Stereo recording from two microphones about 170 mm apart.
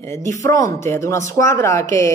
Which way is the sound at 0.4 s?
20° left (ahead or behind).